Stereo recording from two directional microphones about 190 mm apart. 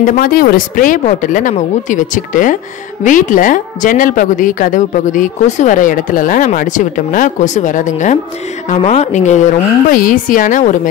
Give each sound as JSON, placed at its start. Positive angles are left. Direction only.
{"t": 0.0, "sound": "a woman's voice", "side_deg": 45}